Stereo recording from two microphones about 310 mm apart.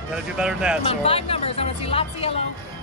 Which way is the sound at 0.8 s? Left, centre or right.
Centre.